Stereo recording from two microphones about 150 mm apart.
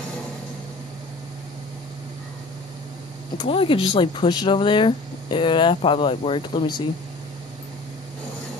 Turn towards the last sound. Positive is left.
turn(degrees=35)  # may be behind; listen again after turning